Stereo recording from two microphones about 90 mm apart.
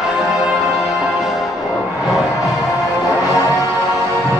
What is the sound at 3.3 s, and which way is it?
Music, 35° left (ahead or behind).